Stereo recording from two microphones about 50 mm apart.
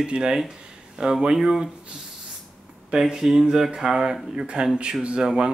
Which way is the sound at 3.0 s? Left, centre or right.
Centre.